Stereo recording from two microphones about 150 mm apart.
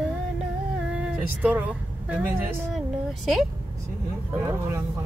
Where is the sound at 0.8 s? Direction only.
5° right (ahead or behind).